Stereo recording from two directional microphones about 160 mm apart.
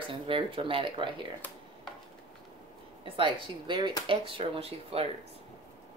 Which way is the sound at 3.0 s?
35° right (ahead or behind).